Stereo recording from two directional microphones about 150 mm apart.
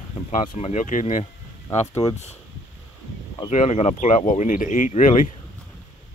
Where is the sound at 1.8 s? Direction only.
15° left (ahead or behind).